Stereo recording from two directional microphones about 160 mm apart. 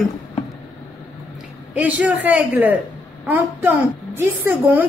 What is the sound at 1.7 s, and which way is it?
A woman's voice, 10° right (ahead or behind).